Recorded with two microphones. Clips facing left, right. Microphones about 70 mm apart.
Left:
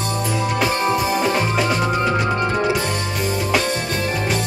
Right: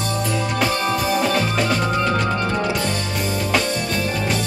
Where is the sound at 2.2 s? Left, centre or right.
Left.